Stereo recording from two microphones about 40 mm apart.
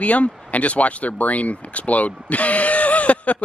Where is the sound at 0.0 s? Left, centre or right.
Left.